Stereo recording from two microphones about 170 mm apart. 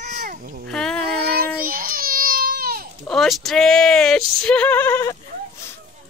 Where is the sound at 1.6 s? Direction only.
60° right (ahead or behind).